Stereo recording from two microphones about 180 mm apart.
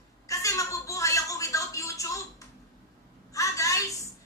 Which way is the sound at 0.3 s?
20° left (ahead or behind).